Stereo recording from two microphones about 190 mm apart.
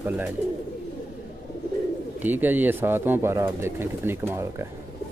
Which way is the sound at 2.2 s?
10° right (ahead or behind).